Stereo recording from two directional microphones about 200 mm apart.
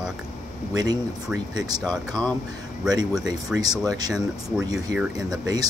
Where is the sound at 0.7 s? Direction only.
20° right (ahead or behind).